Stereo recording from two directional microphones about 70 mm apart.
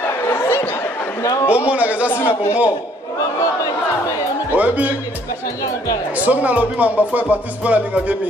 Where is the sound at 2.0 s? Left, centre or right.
Left.